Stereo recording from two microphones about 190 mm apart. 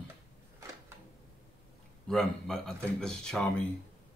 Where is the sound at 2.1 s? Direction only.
Centre (ahead or behind).